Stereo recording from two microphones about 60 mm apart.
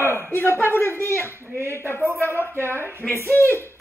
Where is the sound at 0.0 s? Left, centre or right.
Right.